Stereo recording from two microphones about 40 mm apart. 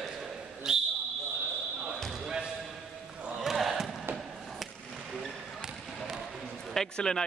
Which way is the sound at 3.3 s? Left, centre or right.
Centre.